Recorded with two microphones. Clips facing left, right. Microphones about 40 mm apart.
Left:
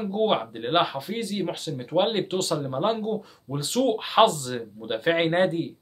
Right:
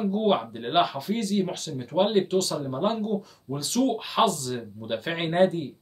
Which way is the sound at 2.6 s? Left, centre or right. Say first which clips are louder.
Left 1 dB; left.